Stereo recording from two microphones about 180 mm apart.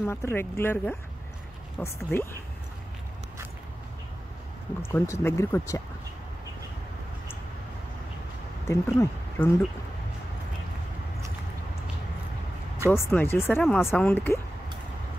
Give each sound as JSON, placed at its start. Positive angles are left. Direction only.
{"t": 0.0, "sound": "speech", "side_deg": 10}
{"t": 4.8, "sound": "speech", "side_deg": 15}
{"t": 8.6, "sound": "speech", "side_deg": 15}
{"t": 12.9, "sound": "speech", "side_deg": 10}